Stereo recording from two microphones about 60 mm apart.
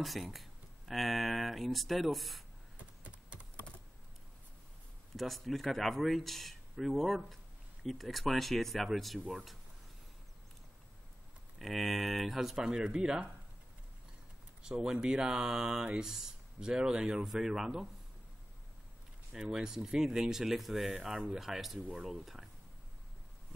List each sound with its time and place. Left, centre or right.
0.0 s speech: centre
3.0 s computer keyboard: right
5.1 s speech: centre
11.5 s speech: centre
14.6 s speech: centre
19.3 s speech: centre